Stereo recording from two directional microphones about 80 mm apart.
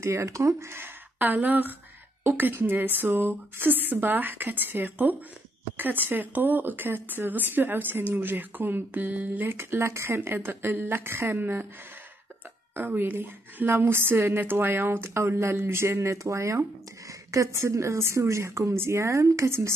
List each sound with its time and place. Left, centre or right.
0.0 s speech: right
12.7 s speech: right